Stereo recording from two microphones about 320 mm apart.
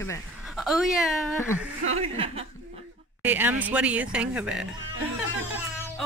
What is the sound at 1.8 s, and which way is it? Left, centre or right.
Speech, centre.